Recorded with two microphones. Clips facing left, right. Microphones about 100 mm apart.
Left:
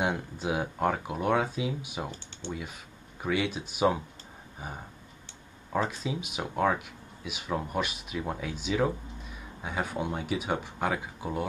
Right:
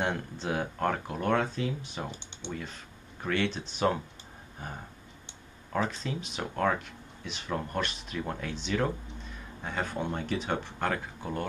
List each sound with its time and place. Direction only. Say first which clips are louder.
0.0 s speech: left 2 dB; 10° left (ahead or behind)
2.0 s speech: left 1 dB; 20° right (ahead or behind)
2.5 s speech: even; 10° left (ahead or behind)